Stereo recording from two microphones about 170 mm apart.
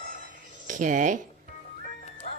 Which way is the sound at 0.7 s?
50° right (ahead or behind).